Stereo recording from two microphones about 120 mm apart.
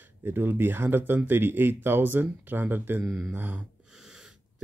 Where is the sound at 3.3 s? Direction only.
15° right (ahead or behind).